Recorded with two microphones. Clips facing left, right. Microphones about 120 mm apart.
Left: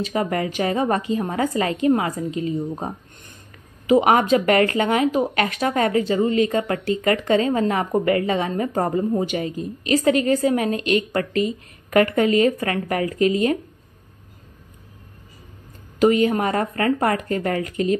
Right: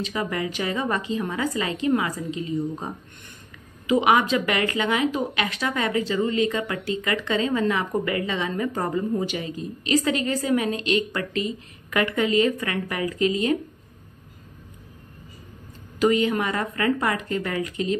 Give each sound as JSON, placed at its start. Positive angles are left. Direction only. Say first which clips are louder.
{"t": 0.0, "sound": "a woman's voice", "louder": "left 4 dB", "side_deg": 45}
{"t": 4.0, "sound": "a woman's voice", "louder": "left 3 dB", "side_deg": 45}
{"t": 16.0, "sound": "a woman's voice", "louder": "left 4 dB", "side_deg": 45}